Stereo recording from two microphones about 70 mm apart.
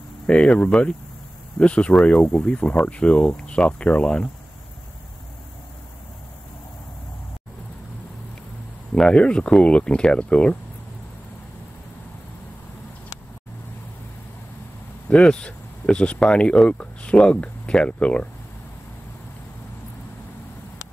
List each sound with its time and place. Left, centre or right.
0.3 s speech: centre
8.9 s speech: centre
15.0 s speech: centre